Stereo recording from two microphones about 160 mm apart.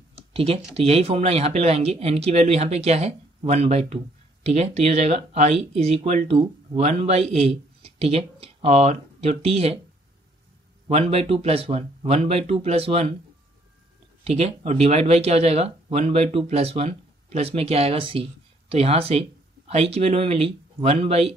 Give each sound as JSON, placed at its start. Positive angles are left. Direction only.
{"t": 0.3, "sound": "computer keyboard", "side_deg": -35}
{"t": 0.7, "sound": "speech", "side_deg": -40}
{"t": 10.9, "sound": "speech", "side_deg": -40}
{"t": 14.2, "sound": "speech", "side_deg": -40}